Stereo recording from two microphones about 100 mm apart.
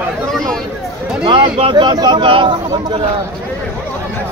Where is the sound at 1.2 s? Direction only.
60° right (ahead or behind).